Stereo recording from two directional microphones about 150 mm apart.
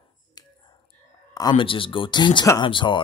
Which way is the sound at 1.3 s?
30° left (ahead or behind).